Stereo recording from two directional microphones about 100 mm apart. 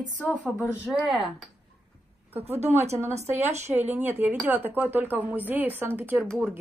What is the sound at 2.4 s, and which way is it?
Speech, 90° right.